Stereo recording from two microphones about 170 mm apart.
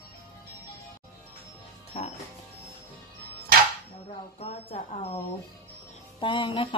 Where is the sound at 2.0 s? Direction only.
35° left (ahead or behind).